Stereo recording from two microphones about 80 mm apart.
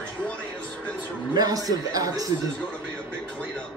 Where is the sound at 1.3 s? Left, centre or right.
Right.